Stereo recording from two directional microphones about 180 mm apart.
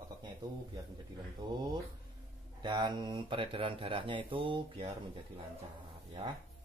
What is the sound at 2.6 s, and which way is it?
Speech, 25° right (ahead or behind).